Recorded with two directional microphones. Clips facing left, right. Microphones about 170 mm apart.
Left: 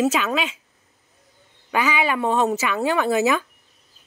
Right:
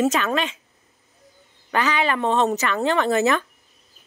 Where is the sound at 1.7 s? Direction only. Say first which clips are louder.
Even; 10° left (ahead or behind).